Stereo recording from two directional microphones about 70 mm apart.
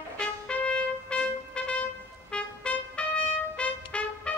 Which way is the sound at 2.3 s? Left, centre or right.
Centre.